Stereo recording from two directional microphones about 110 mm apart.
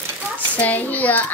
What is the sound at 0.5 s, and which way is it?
Speech, 15° left (ahead or behind).